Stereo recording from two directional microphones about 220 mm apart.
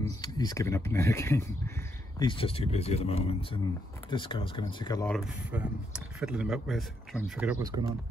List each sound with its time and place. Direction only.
0.0 s speech: 15° left (ahead or behind)
2.1 s speech: 25° left (ahead or behind)
5.0 s speech: centre (ahead or behind)